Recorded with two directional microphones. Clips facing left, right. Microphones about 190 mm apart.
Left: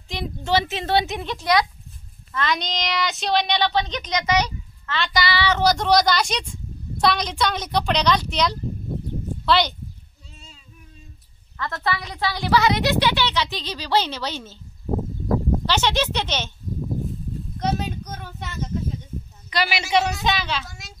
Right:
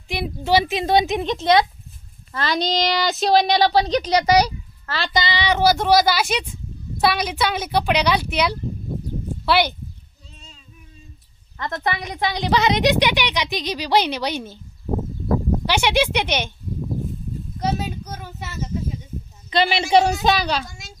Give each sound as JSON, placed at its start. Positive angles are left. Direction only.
{"t": 0.1, "sound": "a woman's voice", "side_deg": -10}
{"t": 5.1, "sound": "a woman's voice", "side_deg": -20}
{"t": 5.6, "sound": "a woman's voice", "side_deg": -5}
{"t": 11.5, "sound": "a woman's voice", "side_deg": -20}
{"t": 15.6, "sound": "a woman's voice", "side_deg": -10}
{"t": 17.6, "sound": "a sound", "side_deg": -5}
{"t": 19.5, "sound": "a woman's voice", "side_deg": -25}